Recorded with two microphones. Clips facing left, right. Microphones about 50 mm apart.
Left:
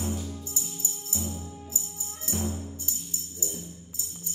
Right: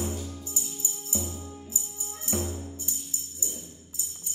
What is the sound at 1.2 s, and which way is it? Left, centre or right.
Music, centre.